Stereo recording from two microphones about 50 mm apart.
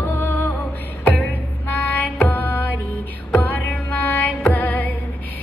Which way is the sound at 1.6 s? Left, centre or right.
Left.